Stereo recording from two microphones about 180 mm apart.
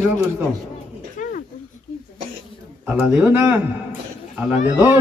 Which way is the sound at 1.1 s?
45° left (ahead or behind).